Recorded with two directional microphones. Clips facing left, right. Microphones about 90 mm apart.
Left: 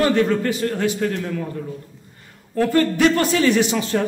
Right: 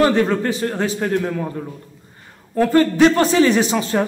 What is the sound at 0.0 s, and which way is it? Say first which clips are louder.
Speech: right 2 dB; 35° right (ahead or behind).